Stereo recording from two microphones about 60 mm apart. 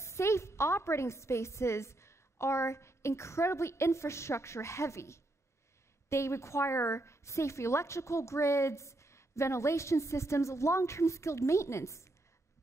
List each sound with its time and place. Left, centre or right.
0.0 s a woman's voice: left